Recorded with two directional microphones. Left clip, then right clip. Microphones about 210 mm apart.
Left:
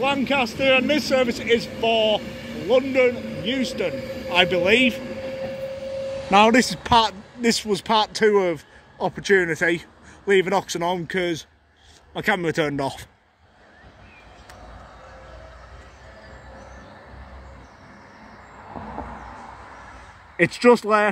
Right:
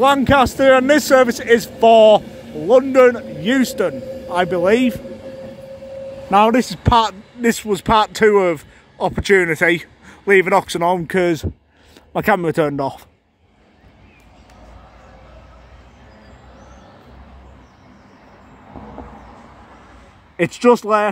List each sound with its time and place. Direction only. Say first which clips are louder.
0.0 s a man's voice: right 9 dB; 25° right (ahead or behind)
4.6 s a man's voice: right 6 dB; 20° right (ahead or behind)
6.3 s a man's voice: right 2 dB; 10° right (ahead or behind)
20.3 s speech: right 2 dB; 10° right (ahead or behind)